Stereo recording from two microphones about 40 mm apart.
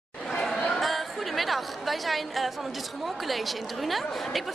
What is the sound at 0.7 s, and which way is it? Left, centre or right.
A woman's voice, centre.